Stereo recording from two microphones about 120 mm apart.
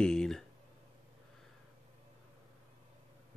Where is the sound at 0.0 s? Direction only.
5° left (ahead or behind).